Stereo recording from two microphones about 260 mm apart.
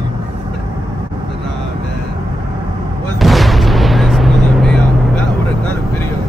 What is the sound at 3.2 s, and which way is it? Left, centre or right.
Artillery fire, centre.